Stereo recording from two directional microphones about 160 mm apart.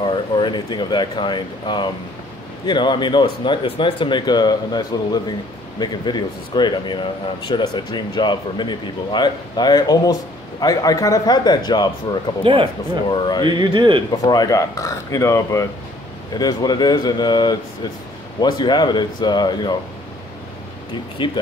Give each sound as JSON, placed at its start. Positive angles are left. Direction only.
{"t": 0.0, "sound": "speech", "side_deg": 30}
{"t": 12.4, "sound": "speech", "side_deg": -35}
{"t": 13.1, "sound": "speech", "side_deg": 30}
{"t": 13.5, "sound": "speech", "side_deg": -25}
{"t": 14.3, "sound": "speech", "side_deg": 25}
{"t": 21.2, "sound": "speech", "side_deg": 30}